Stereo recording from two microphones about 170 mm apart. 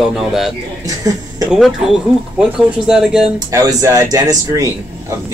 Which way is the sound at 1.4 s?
Centre (ahead or behind).